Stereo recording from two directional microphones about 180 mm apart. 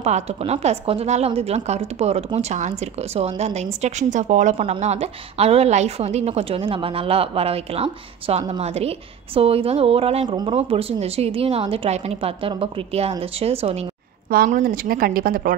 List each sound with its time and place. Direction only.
0.0 s a woman's voice: 35° right (ahead or behind)
14.3 s speech: 55° right (ahead or behind)